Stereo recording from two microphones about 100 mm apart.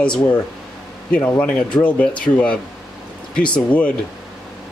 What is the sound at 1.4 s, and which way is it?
Speech, 10° left (ahead or behind).